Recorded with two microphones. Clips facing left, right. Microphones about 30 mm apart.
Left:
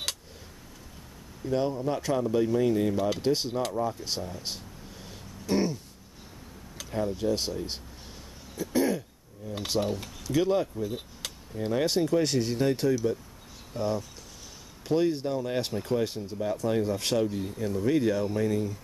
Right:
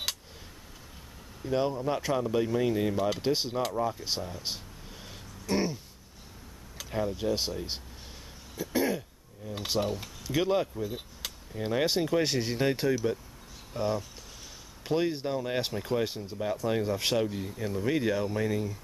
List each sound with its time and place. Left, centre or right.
1.4 s speech: centre
5.0 s a sound: centre
7.1 s speech: centre
8.5 s throat clearing: centre
9.5 s speech: centre
10.7 s speech: centre
11.5 s speech: centre